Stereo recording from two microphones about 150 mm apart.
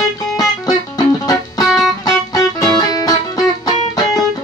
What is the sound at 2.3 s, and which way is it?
Music, 25° left (ahead or behind).